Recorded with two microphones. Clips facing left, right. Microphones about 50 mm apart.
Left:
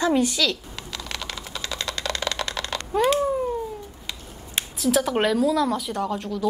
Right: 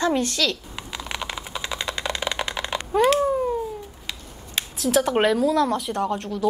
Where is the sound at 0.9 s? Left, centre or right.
Centre.